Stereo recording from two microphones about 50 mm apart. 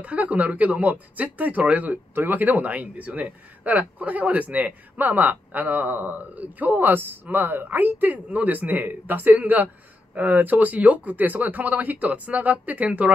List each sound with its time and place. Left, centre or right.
0.0 s speech: right